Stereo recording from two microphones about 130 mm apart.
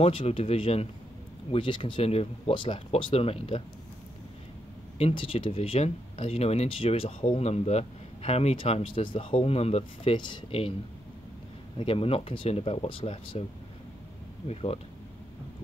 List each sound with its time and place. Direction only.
0.0 s speech: 45° left (ahead or behind)
4.9 s speech: 45° left (ahead or behind)
10.1 s speech: 35° left (ahead or behind)
11.7 s speech: 45° left (ahead or behind)
14.5 s speech: 50° left (ahead or behind)